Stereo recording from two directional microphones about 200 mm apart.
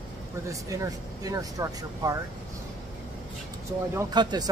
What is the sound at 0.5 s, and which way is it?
Speech, 15° right (ahead or behind).